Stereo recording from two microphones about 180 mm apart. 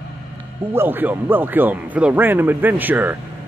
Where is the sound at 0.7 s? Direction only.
10° right (ahead or behind).